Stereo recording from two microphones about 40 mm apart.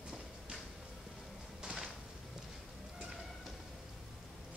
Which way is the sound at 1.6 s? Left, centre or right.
Centre.